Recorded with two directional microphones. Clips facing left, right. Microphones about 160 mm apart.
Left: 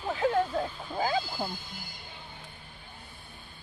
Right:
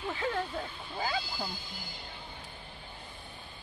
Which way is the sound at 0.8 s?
50° left (ahead or behind).